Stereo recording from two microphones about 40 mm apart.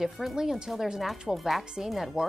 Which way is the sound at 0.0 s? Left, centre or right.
Centre.